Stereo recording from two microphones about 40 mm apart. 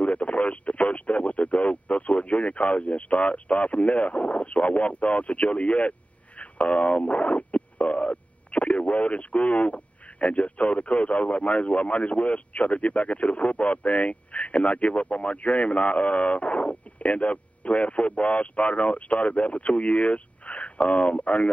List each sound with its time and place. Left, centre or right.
0.0 s speech: left